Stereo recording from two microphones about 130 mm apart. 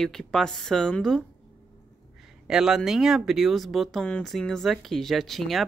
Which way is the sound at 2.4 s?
5° right (ahead or behind).